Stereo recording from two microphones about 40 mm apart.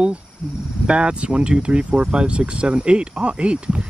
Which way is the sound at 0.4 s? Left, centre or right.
Centre.